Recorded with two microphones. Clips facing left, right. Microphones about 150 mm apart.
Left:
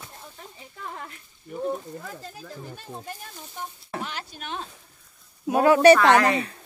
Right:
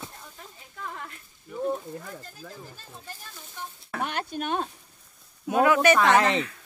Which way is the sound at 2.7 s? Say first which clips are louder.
Left 7 dB; 60° left (ahead or behind).